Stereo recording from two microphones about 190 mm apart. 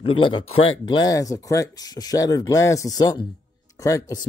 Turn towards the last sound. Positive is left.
turn(degrees=20)  # may be behind; listen again after turning